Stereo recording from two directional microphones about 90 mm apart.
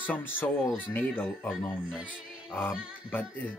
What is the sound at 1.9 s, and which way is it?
Music, 5° right (ahead or behind).